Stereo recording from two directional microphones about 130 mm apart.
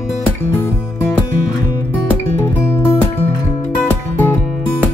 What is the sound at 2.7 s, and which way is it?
Music, 20° left (ahead or behind).